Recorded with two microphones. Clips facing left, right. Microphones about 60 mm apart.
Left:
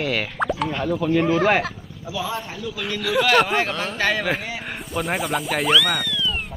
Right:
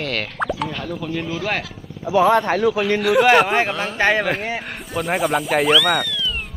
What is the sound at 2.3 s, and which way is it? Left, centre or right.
Speech, right.